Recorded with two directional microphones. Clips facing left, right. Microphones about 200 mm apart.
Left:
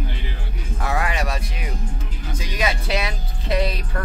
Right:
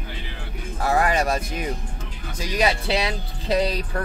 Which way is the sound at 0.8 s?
40° right (ahead or behind).